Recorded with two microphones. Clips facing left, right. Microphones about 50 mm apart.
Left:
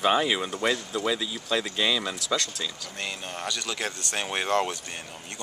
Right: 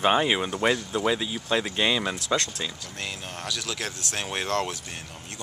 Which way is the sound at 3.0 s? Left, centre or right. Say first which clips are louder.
Left 2 dB; centre.